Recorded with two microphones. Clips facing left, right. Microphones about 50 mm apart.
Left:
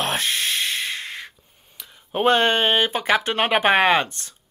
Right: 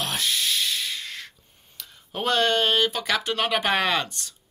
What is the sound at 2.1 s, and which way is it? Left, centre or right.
Speech, left.